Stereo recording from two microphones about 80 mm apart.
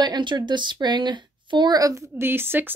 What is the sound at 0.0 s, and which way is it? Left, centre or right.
Speech, right.